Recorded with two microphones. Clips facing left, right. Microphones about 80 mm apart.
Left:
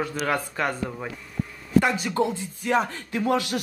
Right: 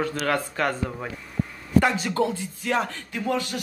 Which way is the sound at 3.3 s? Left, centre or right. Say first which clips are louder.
Left 2 dB; left.